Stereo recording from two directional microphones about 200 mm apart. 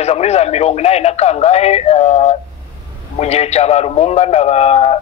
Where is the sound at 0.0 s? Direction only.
30° left (ahead or behind).